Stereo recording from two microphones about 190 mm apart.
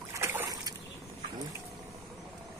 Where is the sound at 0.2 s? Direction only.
15° right (ahead or behind).